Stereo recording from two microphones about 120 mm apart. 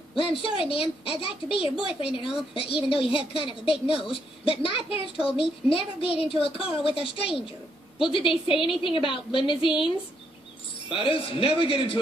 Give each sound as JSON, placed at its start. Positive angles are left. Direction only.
{"t": 0.1, "sound": "a woman's voice", "side_deg": 50}
{"t": 10.9, "sound": "a woman's voice", "side_deg": 45}